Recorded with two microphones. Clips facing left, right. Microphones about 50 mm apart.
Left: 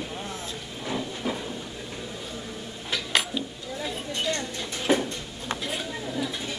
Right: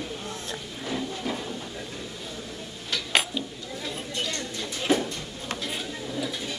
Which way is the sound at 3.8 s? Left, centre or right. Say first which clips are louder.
Left 3 dB; centre.